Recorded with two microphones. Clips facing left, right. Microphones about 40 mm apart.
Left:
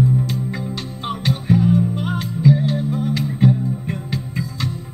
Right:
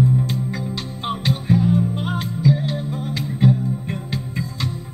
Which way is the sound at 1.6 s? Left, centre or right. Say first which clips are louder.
Left 3 dB; centre.